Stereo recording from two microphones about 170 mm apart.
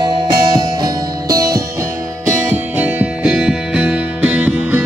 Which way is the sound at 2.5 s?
10° right (ahead or behind).